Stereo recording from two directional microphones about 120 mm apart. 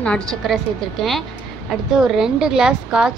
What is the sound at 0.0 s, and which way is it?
A woman's voice, 5° left (ahead or behind).